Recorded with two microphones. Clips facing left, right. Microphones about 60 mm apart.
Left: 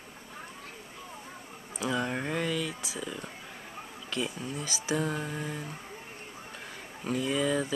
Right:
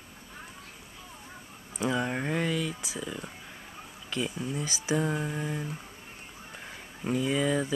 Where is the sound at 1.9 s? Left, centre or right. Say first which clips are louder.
Right 1 dB; centre.